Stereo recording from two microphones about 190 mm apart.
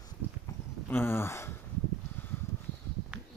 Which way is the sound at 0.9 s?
10° left (ahead or behind).